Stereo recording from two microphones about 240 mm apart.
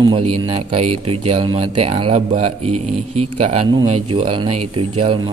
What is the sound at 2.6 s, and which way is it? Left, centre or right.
Speech, right.